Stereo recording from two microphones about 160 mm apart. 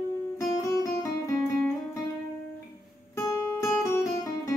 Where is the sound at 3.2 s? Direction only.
15° left (ahead or behind).